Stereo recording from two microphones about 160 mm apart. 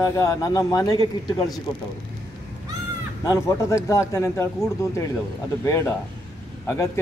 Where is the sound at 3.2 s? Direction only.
20° left (ahead or behind).